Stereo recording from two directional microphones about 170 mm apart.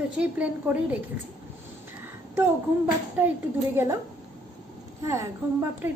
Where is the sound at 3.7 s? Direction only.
15° right (ahead or behind).